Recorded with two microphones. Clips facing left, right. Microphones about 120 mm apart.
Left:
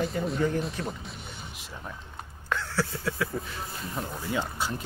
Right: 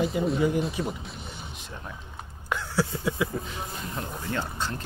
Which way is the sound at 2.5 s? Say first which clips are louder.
Right 2 dB; 15° right (ahead or behind).